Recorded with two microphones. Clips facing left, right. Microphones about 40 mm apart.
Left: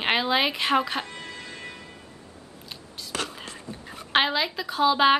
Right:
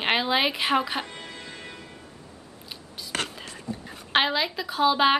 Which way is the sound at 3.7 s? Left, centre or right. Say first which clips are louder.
Right 9 dB; left.